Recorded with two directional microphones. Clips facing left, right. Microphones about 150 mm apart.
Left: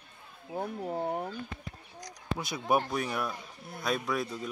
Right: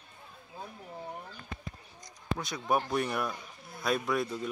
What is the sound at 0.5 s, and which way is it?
Speech, 75° left (ahead or behind).